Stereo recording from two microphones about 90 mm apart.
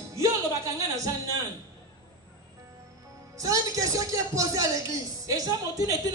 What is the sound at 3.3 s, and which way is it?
Speech, 40° right (ahead or behind).